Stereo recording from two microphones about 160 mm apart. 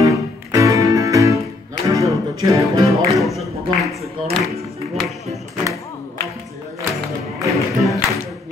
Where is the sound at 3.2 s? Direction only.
Centre (ahead or behind).